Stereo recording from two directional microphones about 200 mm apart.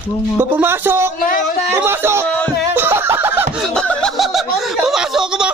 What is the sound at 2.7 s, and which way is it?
Snicker, 10° right (ahead or behind).